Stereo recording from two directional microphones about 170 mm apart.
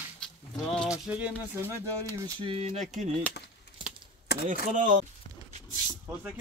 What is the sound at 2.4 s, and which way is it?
Speech, 35° right (ahead or behind).